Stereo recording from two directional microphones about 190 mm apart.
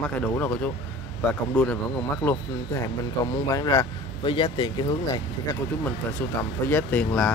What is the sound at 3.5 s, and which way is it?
Speech, 20° left (ahead or behind).